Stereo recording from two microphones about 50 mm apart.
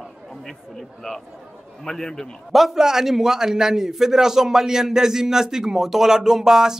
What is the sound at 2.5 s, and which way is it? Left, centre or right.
A man's voice, centre.